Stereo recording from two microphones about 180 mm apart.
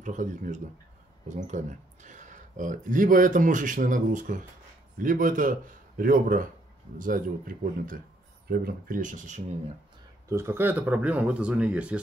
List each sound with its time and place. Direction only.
0.0 s speech: 45° right (ahead or behind)
10.2 s speech: 15° right (ahead or behind)